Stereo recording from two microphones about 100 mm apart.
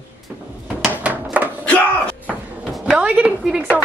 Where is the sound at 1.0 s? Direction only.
15° right (ahead or behind).